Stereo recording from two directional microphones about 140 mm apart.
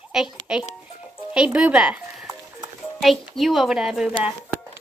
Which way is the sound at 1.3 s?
5° right (ahead or behind).